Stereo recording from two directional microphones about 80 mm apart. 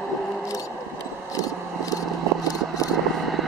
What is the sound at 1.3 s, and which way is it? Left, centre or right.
Vehicle, left.